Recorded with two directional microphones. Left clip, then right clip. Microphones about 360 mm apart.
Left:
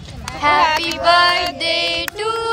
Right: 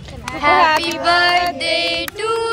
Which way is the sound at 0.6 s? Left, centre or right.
Centre.